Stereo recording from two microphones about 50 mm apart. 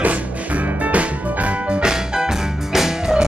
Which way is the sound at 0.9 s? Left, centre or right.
Right.